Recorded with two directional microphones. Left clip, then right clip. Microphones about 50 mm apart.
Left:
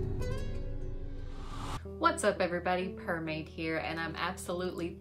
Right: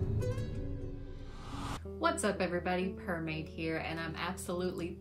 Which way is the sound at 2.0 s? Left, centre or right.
Left.